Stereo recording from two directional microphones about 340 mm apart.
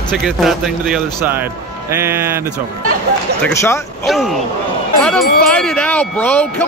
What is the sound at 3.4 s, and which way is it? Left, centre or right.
Speech, centre.